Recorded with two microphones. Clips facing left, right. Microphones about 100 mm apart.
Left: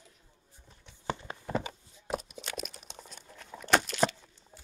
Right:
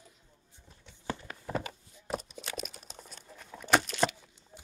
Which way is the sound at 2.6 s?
Centre (ahead or behind).